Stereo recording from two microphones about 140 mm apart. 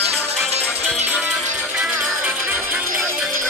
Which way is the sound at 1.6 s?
5° right (ahead or behind).